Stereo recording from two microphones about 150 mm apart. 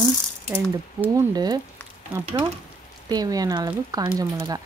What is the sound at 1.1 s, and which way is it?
Speech, 25° right (ahead or behind).